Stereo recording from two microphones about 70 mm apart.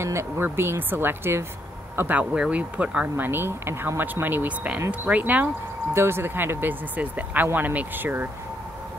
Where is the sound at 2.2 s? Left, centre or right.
Centre.